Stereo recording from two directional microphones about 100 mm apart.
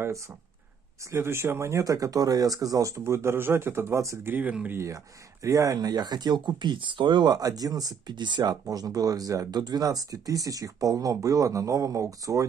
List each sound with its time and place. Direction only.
1.1 s speech: 25° right (ahead or behind)
4.3 s speech: 15° right (ahead or behind)
4.7 s speech: 30° right (ahead or behind)